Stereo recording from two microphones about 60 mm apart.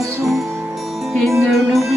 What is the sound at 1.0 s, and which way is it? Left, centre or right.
Music, centre.